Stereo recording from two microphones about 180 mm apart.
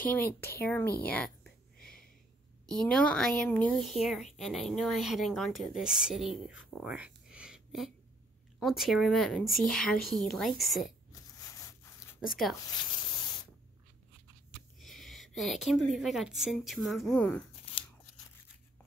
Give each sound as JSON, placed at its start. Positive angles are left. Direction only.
{"t": 0.0, "sound": "speech", "side_deg": 10}
{"t": 0.6, "sound": "a sound", "side_deg": 10}
{"t": 2.6, "sound": "speech", "side_deg": 5}
{"t": 11.6, "sound": "a sound", "side_deg": 15}
{"t": 12.3, "sound": "speech", "side_deg": 0}
{"t": 12.5, "sound": "spray", "side_deg": 25}
{"t": 14.8, "sound": "a woman's voice", "side_deg": 0}